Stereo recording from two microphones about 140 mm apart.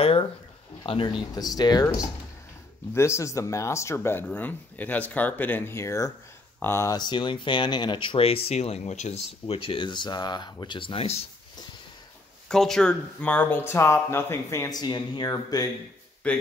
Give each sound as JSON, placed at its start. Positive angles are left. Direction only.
{"t": 0.0, "sound": "a sound", "side_deg": 45}
{"t": 0.8, "sound": "speech", "side_deg": 35}
{"t": 12.4, "sound": "speech", "side_deg": 5}
{"t": 16.2, "sound": "speech", "side_deg": 10}